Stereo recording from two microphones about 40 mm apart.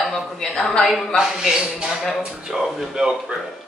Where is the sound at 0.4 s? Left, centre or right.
Centre.